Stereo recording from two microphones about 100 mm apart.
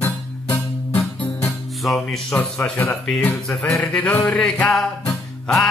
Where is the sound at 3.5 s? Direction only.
5° left (ahead or behind).